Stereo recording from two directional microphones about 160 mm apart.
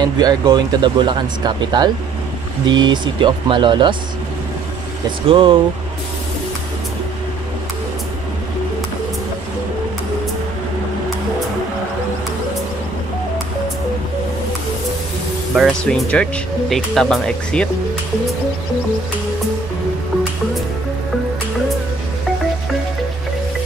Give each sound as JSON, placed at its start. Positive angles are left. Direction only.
{"t": 0.0, "sound": "speech", "side_deg": -25}
{"t": 5.3, "sound": "speech", "side_deg": -35}
{"t": 15.5, "sound": "speech", "side_deg": 5}